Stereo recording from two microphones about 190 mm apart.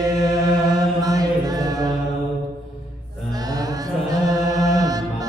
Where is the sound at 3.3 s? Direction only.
20° right (ahead or behind).